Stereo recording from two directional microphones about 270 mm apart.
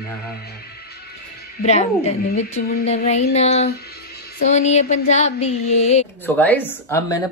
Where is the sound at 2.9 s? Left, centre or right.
Left.